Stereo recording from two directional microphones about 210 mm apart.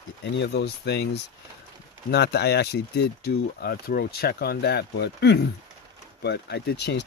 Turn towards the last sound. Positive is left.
turn(degrees=55)  # may be behind; listen again after turning